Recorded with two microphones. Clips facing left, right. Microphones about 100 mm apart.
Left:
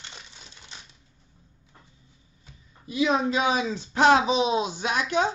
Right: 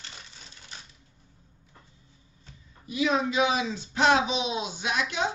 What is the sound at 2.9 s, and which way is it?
Speech, 30° left (ahead or behind).